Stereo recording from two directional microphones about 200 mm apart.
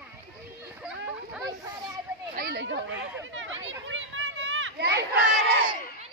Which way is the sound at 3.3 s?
70° right (ahead or behind).